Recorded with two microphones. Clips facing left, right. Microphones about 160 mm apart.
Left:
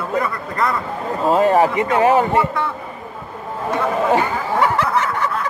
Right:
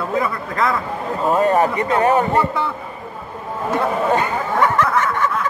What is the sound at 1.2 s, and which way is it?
Speech, 25° left (ahead or behind).